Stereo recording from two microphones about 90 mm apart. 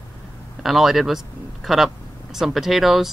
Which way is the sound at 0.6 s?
5° right (ahead or behind).